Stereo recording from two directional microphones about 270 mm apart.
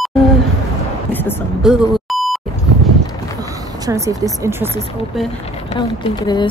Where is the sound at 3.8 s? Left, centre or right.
Centre.